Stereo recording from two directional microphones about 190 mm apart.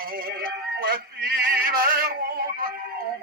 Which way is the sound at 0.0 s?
50° right (ahead or behind).